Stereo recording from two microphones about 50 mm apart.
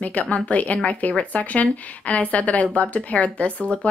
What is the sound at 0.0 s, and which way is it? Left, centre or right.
A woman's voice, left.